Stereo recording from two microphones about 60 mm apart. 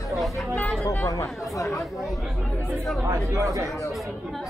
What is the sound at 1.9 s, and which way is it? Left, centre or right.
Speech, centre.